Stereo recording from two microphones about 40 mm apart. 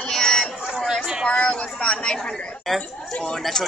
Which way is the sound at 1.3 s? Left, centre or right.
Left.